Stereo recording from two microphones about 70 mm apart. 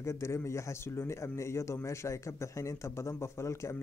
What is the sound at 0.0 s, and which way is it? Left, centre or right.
Speech, left.